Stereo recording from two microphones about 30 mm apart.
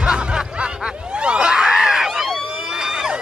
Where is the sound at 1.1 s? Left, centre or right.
Right.